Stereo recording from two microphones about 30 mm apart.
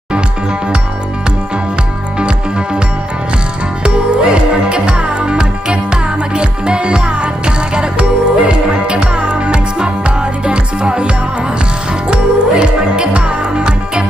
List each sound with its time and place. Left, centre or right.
2.1 s music: right
3.8 s music: right